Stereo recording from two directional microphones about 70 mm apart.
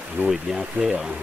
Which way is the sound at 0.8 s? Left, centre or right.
Centre.